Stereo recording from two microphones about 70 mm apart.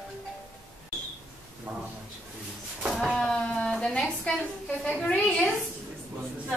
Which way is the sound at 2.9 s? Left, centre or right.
Centre.